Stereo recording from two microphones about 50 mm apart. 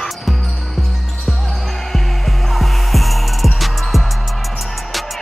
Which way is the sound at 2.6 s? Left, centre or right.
Centre.